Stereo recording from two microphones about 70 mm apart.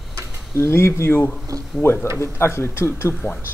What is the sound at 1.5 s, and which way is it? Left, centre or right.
Speech, right.